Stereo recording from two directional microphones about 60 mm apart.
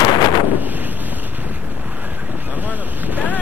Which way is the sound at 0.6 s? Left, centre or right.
Right.